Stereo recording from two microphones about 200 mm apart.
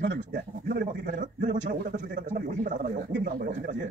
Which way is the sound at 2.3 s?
40° right (ahead or behind).